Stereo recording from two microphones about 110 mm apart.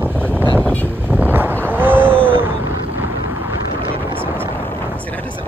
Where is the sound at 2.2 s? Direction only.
55° right (ahead or behind).